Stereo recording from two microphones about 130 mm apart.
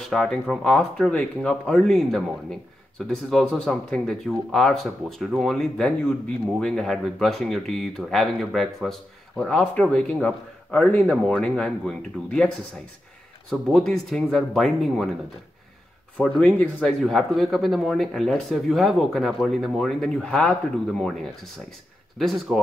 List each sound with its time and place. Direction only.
0.0 s a man's voice: 5° left (ahead or behind)
13.5 s speech: 5° left (ahead or behind)
16.2 s speech: 10° left (ahead or behind)
22.5 s speech: 5° right (ahead or behind)